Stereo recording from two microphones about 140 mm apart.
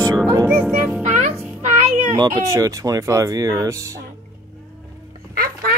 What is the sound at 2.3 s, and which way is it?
Speech, 20° right (ahead or behind).